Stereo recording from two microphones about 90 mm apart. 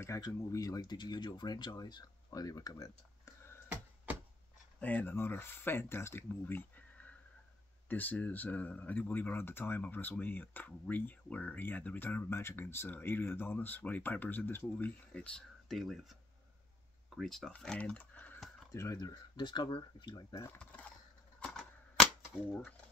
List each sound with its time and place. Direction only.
0.3 s speech: 35° left (ahead or behind)
0.7 s speech: 55° left (ahead or behind)
4.7 s speech: 20° left (ahead or behind); by 17.5 s centre (ahead or behind)
17.5 s speech: 10° left (ahead or behind)
18.7 s speech: 35° left (ahead or behind)
18.9 s speech: 50° left (ahead or behind)
20.5 s coin: 15° left (ahead or behind)
21.4 s scissors: 5° left (ahead or behind)
22.5 s speech: 25° left (ahead or behind)